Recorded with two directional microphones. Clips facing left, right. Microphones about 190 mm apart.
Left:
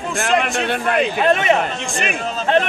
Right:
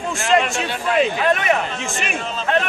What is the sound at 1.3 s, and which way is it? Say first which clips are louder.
Speech: left 3 dB; 25° left (ahead or behind).